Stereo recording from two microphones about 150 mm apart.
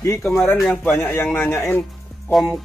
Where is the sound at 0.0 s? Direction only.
20° left (ahead or behind).